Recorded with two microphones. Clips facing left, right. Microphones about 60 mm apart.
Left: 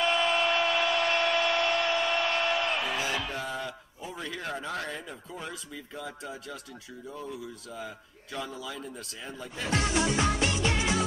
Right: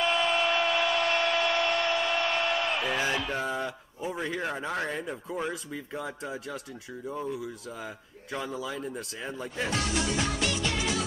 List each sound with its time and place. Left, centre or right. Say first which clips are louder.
0.0 s tools: even; centre
3.3 s speech: right 3 dB; right
9.7 s music: left 4 dB; left